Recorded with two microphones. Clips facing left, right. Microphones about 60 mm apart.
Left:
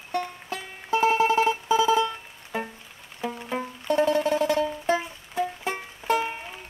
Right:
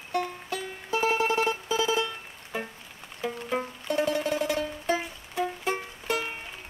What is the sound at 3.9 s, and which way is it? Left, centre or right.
Music, left.